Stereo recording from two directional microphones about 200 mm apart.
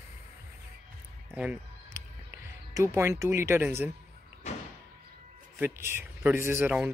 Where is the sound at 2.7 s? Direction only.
15° right (ahead or behind).